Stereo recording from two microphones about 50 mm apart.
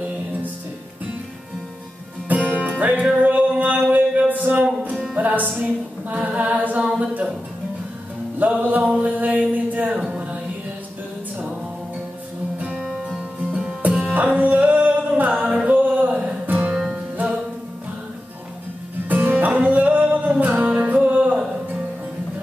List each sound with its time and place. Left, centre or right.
2.8 s music: right
5.6 s female singing: right
8.4 s music: right
9.5 s a capella: right
10.0 s music: right
12.5 s music: right
19.0 s music: right
21.0 s a sound: right